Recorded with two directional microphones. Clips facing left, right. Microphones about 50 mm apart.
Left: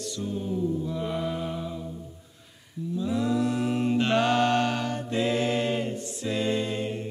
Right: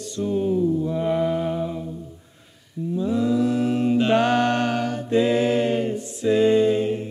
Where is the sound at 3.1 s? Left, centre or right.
Centre.